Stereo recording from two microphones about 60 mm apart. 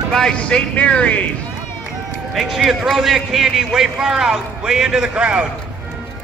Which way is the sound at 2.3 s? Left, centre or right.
Centre.